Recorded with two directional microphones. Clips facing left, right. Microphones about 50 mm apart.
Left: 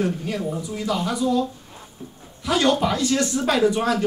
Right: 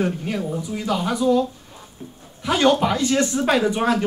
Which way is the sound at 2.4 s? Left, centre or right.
Right.